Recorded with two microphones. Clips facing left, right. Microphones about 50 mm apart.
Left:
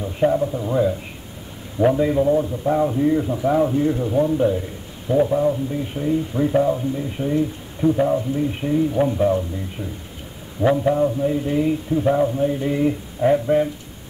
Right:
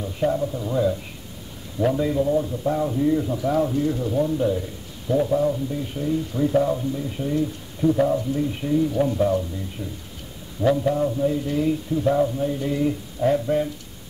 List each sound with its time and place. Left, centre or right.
0.0 s a man's voice: centre